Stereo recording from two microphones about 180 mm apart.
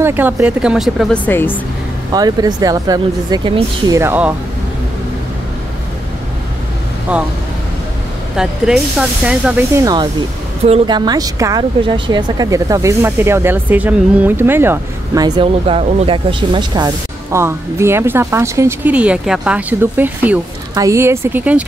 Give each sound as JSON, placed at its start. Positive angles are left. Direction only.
{"t": 0.0, "sound": "speech", "side_deg": -10}
{"t": 2.1, "sound": "speech", "side_deg": -20}
{"t": 4.0, "sound": "a woman's voice", "side_deg": -10}
{"t": 8.4, "sound": "speech", "side_deg": -5}
{"t": 10.6, "sound": "a woman's voice", "side_deg": -35}
{"t": 11.0, "sound": "a woman's voice", "side_deg": -20}